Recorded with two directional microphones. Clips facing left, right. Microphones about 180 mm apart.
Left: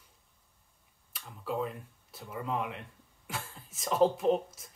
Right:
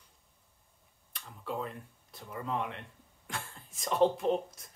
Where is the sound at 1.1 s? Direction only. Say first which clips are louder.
Left 3 dB; 5° left (ahead or behind).